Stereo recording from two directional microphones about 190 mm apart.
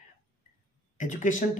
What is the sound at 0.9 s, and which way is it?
Speech, 40° left (ahead or behind).